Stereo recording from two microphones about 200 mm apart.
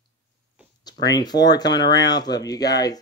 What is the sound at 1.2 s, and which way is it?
Speech, 20° left (ahead or behind).